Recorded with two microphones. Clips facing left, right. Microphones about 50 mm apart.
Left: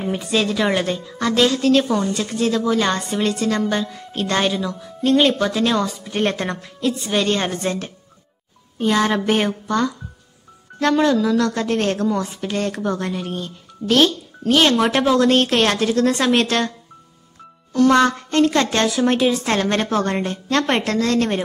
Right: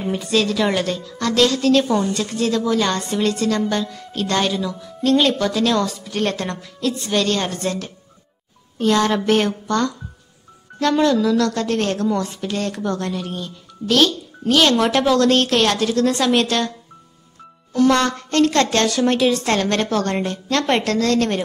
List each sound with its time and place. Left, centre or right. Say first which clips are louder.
0.0 s a woman's voice: right 1 dB; centre
6.0 s a woman's voice: left 1 dB; left
10.8 s a woman's voice: even; left
12.7 s a woman's voice: left 1 dB; centre
13.1 s a woman's voice: left 1 dB; left
17.8 s a woman's voice: left 2 dB; left